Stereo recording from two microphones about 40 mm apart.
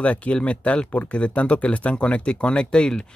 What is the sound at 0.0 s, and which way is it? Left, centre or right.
Speech, left.